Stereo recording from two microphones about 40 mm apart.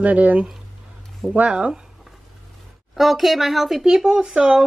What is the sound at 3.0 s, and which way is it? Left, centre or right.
Speech, centre.